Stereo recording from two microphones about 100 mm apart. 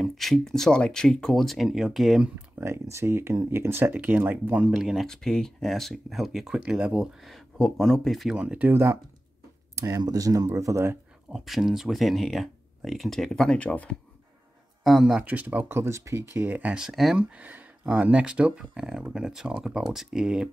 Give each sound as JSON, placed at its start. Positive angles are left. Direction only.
{"t": 0.0, "sound": "speech", "side_deg": 0}
{"t": 2.6, "sound": "speech", "side_deg": -25}
{"t": 8.4, "sound": "speech", "side_deg": -15}
{"t": 9.8, "sound": "speech", "side_deg": -35}
{"t": 11.2, "sound": "speech", "side_deg": 0}
{"t": 14.8, "sound": "speech", "side_deg": 0}
{"t": 15.2, "sound": "speech", "side_deg": -15}
{"t": 15.8, "sound": "speech", "side_deg": -30}
{"t": 17.3, "sound": "speech", "side_deg": -15}